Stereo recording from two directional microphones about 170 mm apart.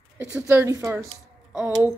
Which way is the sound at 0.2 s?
15° right (ahead or behind).